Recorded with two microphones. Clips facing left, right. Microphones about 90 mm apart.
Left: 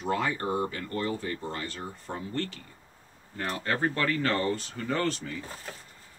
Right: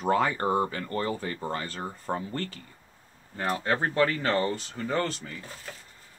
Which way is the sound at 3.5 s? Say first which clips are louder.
Right 2 dB; 25° right (ahead or behind).